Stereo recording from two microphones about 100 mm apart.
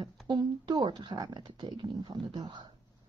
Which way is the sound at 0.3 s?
45° right (ahead or behind).